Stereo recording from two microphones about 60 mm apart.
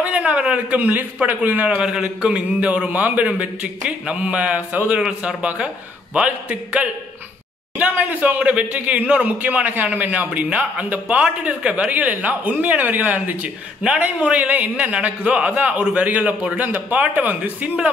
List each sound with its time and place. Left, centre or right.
0.0 s speech: centre
1.8 s speech: centre